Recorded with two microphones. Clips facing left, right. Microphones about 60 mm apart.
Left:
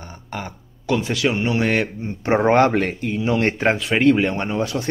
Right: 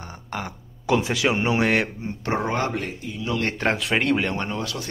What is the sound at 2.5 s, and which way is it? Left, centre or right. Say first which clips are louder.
Speech: left 10 dB; left.